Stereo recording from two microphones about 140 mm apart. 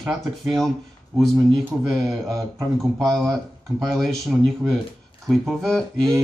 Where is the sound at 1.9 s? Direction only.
25° right (ahead or behind).